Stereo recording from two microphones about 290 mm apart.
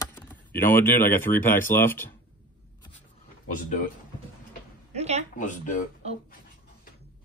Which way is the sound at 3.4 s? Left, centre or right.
Left.